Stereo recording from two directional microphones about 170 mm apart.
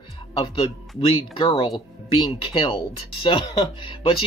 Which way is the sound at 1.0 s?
30° left (ahead or behind).